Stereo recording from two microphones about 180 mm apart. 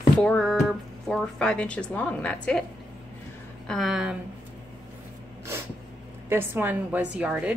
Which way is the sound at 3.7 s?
Centre (ahead or behind).